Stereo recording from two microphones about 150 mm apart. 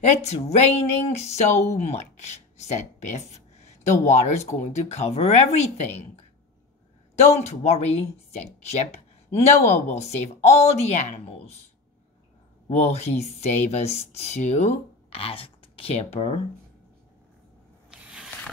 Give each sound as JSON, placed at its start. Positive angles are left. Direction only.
{"t": 0.0, "sound": "speech", "side_deg": 50}
{"t": 12.6, "sound": "speech", "side_deg": 45}
{"t": 18.1, "sound": "a sound", "side_deg": -5}